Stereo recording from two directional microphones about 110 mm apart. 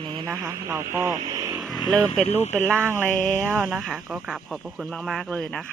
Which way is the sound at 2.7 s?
20° right (ahead or behind).